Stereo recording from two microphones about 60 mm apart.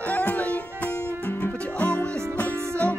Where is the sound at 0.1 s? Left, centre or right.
Left.